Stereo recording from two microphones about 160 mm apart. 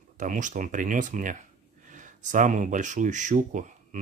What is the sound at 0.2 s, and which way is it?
Speech, 55° right (ahead or behind).